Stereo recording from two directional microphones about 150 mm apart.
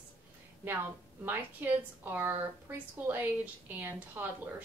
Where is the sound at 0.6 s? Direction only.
10° right (ahead or behind).